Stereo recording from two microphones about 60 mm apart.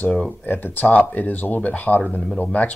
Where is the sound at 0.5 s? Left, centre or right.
Left.